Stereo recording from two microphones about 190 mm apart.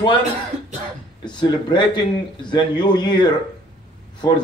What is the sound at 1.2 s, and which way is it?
Speech, 25° left (ahead or behind).